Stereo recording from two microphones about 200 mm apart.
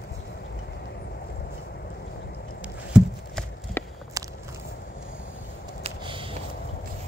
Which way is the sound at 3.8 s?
10° left (ahead or behind).